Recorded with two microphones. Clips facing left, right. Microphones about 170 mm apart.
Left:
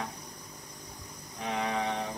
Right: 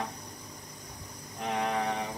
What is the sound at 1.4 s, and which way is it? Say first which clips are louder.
Speech: right 1 dB; centre (ahead or behind).